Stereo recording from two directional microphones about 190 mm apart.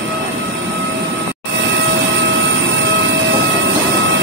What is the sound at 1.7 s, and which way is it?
Train, 70° right (ahead or behind).